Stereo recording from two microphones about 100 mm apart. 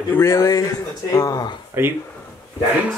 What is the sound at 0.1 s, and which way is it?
Speech, 25° left (ahead or behind).